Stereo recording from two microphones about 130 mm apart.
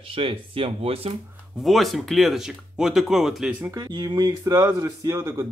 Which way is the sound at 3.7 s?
30° right (ahead or behind).